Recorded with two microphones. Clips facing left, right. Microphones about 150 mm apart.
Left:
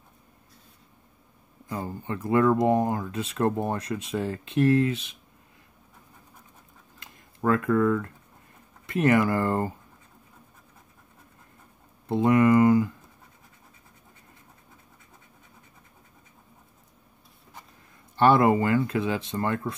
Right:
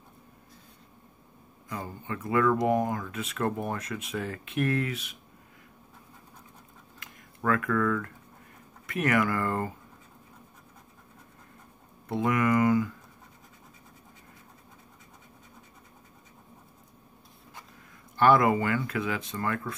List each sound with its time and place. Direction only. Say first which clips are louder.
1.7 s speech: left 4 dB; 30° left (ahead or behind)
7.0 s a sound: left 5 dB; 25° left (ahead or behind)
8.8 s speech: left 5 dB; 25° left (ahead or behind)
12.1 s speech: left 6 dB; 30° left (ahead or behind)
18.1 s speech: left 2 dB; 30° left (ahead or behind)